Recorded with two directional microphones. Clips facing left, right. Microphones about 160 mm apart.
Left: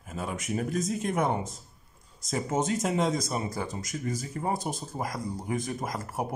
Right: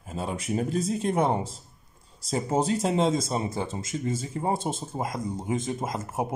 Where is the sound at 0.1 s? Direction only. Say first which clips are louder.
Right 3 dB; 30° right (ahead or behind).